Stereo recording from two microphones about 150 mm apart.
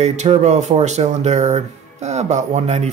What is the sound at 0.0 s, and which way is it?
Speech, 50° right (ahead or behind).